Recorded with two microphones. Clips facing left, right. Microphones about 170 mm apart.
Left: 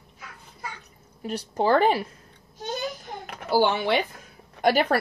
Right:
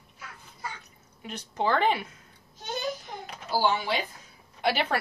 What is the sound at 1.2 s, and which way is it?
Speech, 35° left (ahead or behind).